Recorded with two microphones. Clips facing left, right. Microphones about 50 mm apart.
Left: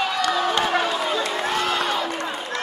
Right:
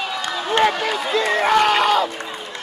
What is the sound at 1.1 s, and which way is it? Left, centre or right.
Crowd, right.